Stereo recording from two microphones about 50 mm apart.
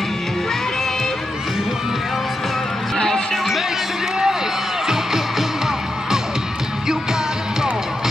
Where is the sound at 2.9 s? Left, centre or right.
Centre.